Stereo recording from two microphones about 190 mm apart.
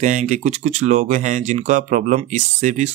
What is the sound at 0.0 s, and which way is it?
Speech, 40° right (ahead or behind).